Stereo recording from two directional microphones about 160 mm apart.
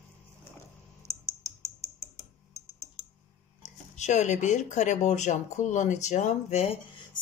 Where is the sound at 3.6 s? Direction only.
45° left (ahead or behind).